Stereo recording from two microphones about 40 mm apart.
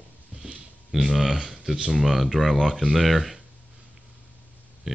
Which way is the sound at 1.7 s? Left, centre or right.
Centre.